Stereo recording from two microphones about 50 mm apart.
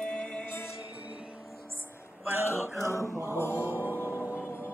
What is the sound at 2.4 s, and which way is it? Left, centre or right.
Music, left.